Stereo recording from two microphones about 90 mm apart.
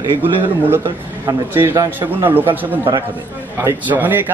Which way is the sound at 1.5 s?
25° right (ahead or behind).